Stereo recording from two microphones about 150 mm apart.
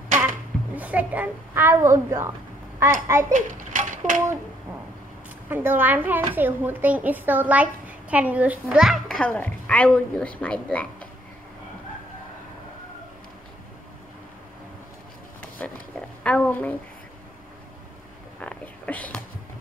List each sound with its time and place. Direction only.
0.7 s a child's voice: 10° right (ahead or behind)
3.3 s a child's voice: 60° right (ahead or behind)
5.5 s a child's voice: 15° right (ahead or behind); by 11.1 s 10° left (ahead or behind)
15.6 s a sound: 10° left (ahead or behind)
16.3 s a woman's voice: 10° left (ahead or behind)
18.4 s a sound: 10° left (ahead or behind)